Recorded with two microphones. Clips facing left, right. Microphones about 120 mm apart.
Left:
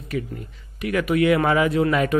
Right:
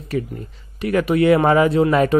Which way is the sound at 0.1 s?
35° right (ahead or behind).